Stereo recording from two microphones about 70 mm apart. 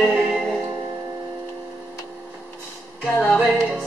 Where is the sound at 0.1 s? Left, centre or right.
Centre.